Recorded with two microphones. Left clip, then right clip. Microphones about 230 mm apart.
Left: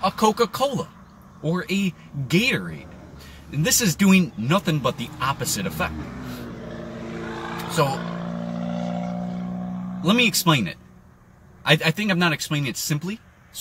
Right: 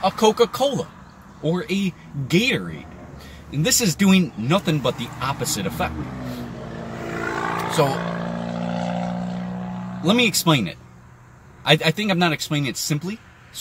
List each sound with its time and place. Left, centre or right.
0.0 s speech: centre
7.2 s vehicle: right
10.1 s speech: centre